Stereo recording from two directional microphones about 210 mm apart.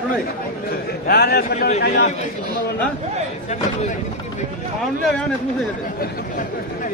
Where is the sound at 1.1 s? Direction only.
50° left (ahead or behind).